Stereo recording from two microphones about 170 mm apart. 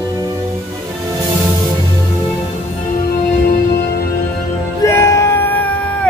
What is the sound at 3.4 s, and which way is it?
Music, 65° left (ahead or behind).